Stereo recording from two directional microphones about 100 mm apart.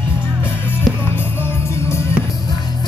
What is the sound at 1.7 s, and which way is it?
Music, 25° left (ahead or behind).